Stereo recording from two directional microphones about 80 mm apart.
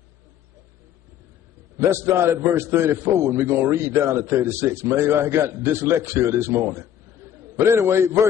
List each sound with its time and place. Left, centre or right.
1.8 s a man's voice: right